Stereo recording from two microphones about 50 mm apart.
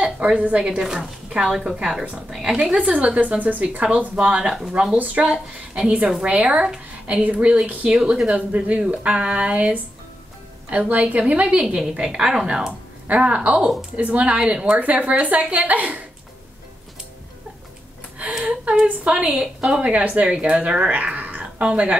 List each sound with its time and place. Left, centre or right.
0.0 s speech: right
0.7 s speech: centre
3.2 s speech: right; by 4.8 s centre
4.9 s speech: right
5.3 s speech: centre
12.0 s speech: centre; by 16.0 s right
18.5 s speech: centre
18.9 s speech: right
19.4 s speech: centre
19.8 s speech: right